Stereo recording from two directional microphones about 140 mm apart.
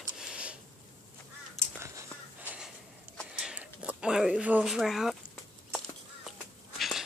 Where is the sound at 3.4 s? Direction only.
10° right (ahead or behind).